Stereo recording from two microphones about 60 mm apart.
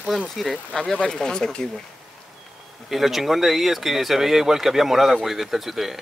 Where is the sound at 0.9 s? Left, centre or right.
Centre.